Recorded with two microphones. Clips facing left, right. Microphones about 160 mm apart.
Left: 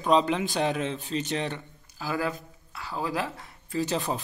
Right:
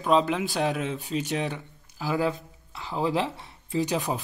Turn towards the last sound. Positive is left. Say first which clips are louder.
# right 2 dB
turn(degrees=-15)  # may be behind; listen again after turning